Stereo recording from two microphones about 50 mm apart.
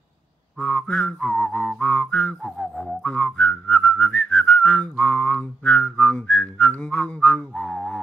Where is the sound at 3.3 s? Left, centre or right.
Left.